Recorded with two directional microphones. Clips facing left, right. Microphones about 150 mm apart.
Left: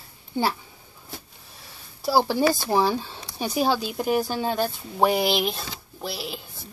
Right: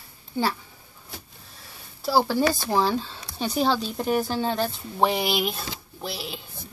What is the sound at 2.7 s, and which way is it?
A woman's voice, 15° left (ahead or behind).